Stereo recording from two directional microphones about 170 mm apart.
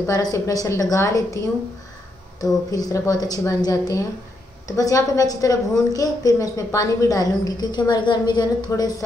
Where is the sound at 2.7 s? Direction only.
20° left (ahead or behind).